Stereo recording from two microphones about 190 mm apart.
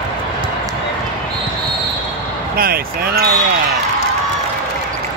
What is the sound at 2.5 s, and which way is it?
Speech, 50° right (ahead or behind).